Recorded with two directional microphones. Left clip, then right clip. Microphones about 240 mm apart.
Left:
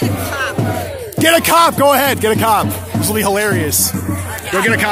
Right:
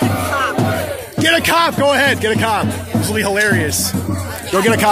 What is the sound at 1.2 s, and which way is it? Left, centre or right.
Music, left.